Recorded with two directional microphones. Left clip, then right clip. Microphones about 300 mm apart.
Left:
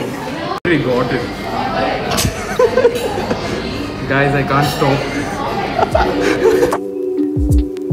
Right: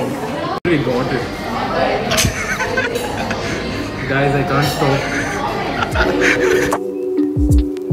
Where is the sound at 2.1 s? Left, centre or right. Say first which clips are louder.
Even; centre.